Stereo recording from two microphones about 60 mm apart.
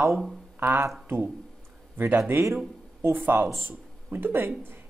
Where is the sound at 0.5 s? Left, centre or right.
Right.